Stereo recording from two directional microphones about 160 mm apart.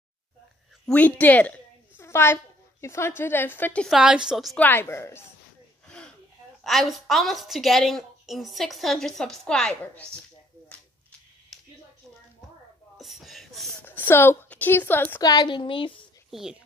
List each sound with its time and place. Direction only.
0.8 s a child's voice: 10° left (ahead or behind)
4.6 s a woman's voice: 10° left (ahead or behind)
6.6 s a woman's voice: centre (ahead or behind)
11.5 s a sound: centre (ahead or behind)
12.9 s a sound: centre (ahead or behind)
13.8 s a woman's voice: 15° left (ahead or behind)
15.1 s a woman's voice: 25° left (ahead or behind)
16.3 s speech: centre (ahead or behind)